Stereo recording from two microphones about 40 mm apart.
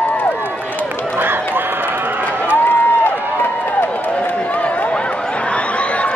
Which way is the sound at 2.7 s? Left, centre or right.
Left.